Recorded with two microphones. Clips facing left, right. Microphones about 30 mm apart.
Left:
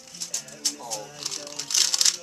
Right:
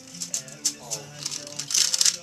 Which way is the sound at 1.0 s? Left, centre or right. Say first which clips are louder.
Left 1 dB; centre.